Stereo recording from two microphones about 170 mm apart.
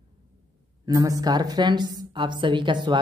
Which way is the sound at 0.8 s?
20° right (ahead or behind).